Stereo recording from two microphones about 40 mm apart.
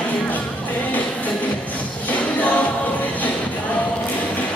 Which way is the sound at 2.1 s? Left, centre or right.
Left.